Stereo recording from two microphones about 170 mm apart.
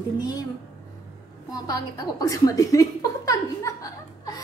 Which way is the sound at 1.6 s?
20° left (ahead or behind).